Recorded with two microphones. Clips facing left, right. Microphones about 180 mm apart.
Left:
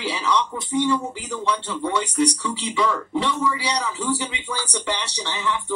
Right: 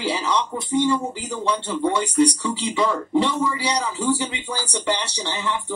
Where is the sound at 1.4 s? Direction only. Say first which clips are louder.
Right 3 dB; 25° right (ahead or behind).